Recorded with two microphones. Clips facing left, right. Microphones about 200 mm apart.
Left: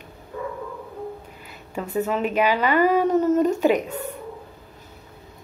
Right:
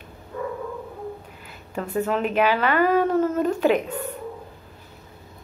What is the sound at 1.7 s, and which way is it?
A woman's voice, 5° left (ahead or behind).